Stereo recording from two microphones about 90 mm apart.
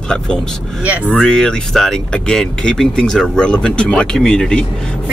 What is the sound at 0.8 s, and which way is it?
Speech, 15° right (ahead or behind).